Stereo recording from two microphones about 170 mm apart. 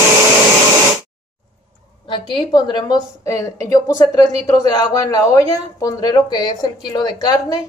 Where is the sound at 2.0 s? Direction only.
25° left (ahead or behind).